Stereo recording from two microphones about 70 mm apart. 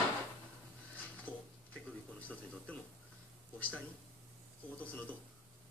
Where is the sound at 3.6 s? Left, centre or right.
Centre.